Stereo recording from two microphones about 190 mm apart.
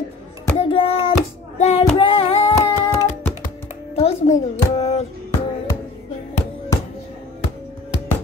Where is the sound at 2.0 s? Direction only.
30° left (ahead or behind).